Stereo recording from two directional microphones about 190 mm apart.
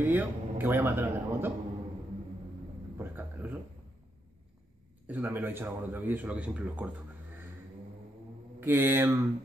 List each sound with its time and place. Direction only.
0.0 s a man's voice: 10° right (ahead or behind)
3.0 s a sound: 10° right (ahead or behind)
5.0 s a man's voice: 10° right (ahead or behind)
8.5 s a man's voice: 10° right (ahead or behind)